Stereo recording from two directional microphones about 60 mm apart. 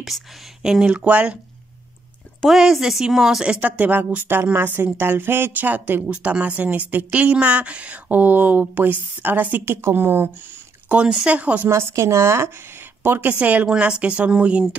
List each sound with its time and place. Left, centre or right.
0.0 s speech: centre
0.8 s speech: right
2.5 s speech: centre
3.4 s speech: right
7.1 s speech: right
9.8 s speech: right
10.9 s speech: centre
11.7 s a woman's voice: right
13.3 s speech: right